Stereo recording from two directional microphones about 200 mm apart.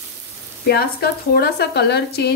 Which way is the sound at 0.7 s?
50° left (ahead or behind).